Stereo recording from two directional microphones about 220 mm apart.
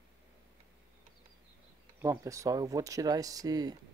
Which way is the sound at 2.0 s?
15° right (ahead or behind).